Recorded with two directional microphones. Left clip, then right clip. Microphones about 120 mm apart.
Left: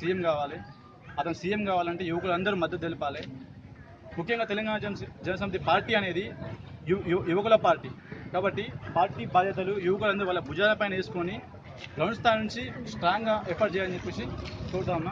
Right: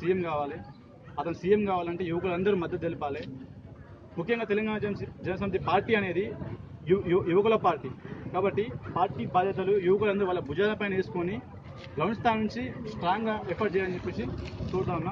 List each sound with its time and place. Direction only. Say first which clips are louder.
0.0 s a man's voice: left 1 dB; 35° left (ahead or behind)
4.2 s a man's voice: right 1 dB; 30° left (ahead or behind)
14.3 s speech: right 1 dB; 25° right (ahead or behind)